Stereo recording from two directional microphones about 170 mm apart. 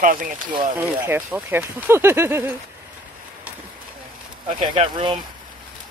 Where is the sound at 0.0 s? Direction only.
55° right (ahead or behind).